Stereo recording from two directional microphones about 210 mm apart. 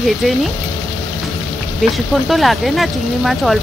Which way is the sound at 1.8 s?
Centre (ahead or behind).